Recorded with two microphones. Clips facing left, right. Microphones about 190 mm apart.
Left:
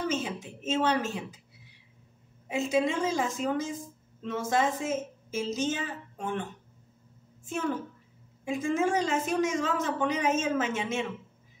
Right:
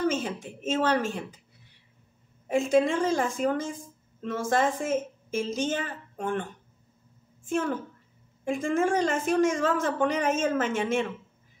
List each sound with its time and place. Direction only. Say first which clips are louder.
0.1 s a woman's voice: right 1 dB; 50° right (ahead or behind)
2.4 s a woman's voice: right 4 dB; 50° right (ahead or behind)
8.5 s a woman's voice: right 2 dB; 50° right (ahead or behind)